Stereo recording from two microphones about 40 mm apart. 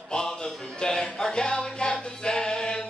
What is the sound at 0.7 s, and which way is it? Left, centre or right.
Music, centre.